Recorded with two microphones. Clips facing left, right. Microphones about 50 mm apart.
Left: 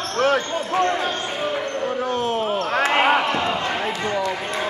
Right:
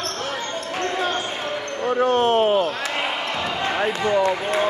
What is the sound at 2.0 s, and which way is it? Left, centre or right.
Basketball bounce, right.